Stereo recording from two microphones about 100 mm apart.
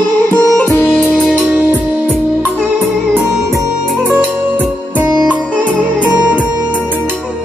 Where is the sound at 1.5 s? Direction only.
15° right (ahead or behind).